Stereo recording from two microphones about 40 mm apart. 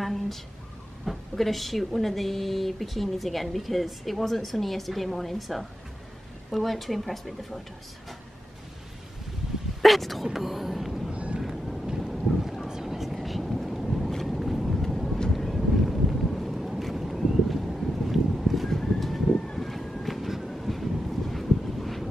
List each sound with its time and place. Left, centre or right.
0.0 s a sound: centre
1.0 s a woman's voice: centre
9.8 s speech: centre
10.2 s a sound: centre
11.1 s vehicle: right
11.3 s boat: centre
14.2 s vehicle: centre